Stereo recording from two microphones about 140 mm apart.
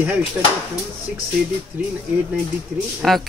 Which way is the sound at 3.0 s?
Centre (ahead or behind).